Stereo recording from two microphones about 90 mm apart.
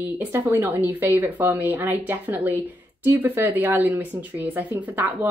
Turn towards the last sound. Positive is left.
turn(degrees=-20)  # may be behind; listen again after turning